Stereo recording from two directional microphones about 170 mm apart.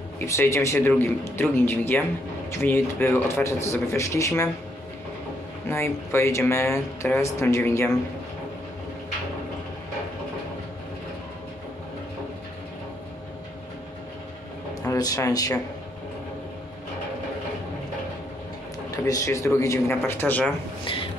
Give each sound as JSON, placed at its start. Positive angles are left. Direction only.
{"t": 0.3, "sound": "speech", "side_deg": 15}
{"t": 5.7, "sound": "speech", "side_deg": 15}
{"t": 14.8, "sound": "speech", "side_deg": 20}
{"t": 18.9, "sound": "speech", "side_deg": 20}